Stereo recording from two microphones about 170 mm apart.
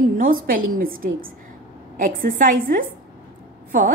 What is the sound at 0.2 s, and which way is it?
A woman's voice, 55° right (ahead or behind).